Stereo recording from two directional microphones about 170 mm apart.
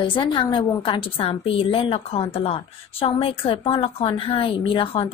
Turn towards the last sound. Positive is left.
turn(degrees=30)  # may be behind; listen again after turning